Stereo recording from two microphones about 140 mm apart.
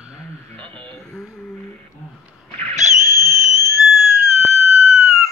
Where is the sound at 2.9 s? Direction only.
20° right (ahead or behind).